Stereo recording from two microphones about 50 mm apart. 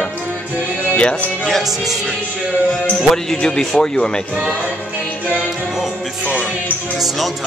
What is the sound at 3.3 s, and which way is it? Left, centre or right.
Speech, centre.